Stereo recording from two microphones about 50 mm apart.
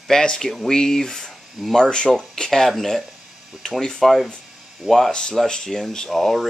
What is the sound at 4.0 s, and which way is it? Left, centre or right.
Speech, centre.